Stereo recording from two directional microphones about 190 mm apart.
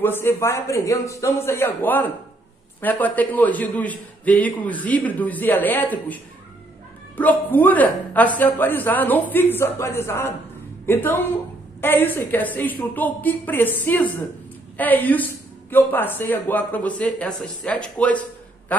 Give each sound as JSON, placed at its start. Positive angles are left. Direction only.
{"t": 0.0, "sound": "a man's voice", "side_deg": 10}